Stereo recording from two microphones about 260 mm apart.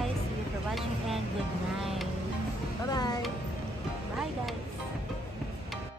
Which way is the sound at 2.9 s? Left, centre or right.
Centre.